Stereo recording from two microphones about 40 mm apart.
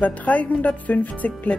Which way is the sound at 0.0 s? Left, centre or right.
Left.